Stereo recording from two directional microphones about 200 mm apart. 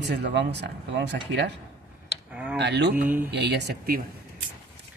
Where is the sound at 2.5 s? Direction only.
60° right (ahead or behind).